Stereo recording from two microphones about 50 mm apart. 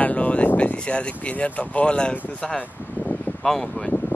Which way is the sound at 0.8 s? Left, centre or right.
Left.